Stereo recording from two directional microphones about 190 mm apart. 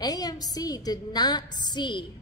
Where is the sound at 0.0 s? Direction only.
20° left (ahead or behind).